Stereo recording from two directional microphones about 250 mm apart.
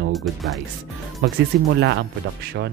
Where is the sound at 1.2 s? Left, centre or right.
Right.